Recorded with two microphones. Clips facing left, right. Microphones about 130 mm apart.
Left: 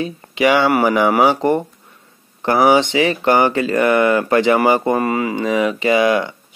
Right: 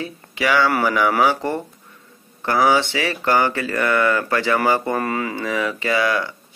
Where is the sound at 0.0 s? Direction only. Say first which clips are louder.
Left 7 dB; 20° left (ahead or behind).